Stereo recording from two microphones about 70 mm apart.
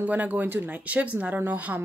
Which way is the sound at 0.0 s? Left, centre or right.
Right.